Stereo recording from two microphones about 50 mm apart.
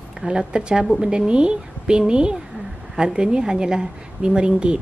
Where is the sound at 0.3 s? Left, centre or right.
Centre.